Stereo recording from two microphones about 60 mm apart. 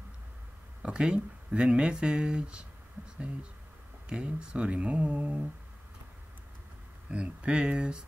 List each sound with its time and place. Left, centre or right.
0.8 s speech: centre
4.1 s speech: centre
7.1 s speech: centre